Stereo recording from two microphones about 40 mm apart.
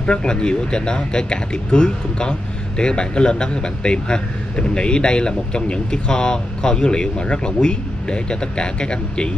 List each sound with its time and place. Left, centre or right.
0.0 s speech: left